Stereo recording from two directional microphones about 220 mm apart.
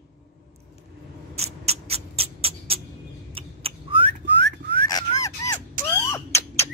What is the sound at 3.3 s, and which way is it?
Owl, 25° right (ahead or behind).